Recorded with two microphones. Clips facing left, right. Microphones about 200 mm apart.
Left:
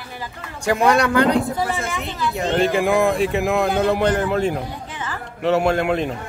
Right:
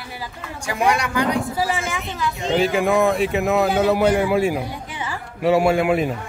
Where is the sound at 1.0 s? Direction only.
60° left (ahead or behind).